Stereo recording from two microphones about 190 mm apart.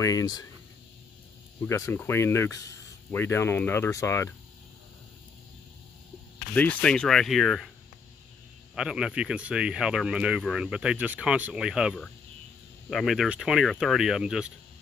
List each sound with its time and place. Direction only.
0.0 s speech: 20° left (ahead or behind)
1.6 s speech: 15° left (ahead or behind)
6.5 s speech: 5° left (ahead or behind)
8.7 s speech: 5° right (ahead or behind)